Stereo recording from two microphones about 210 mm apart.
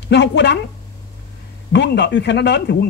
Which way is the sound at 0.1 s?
55° left (ahead or behind).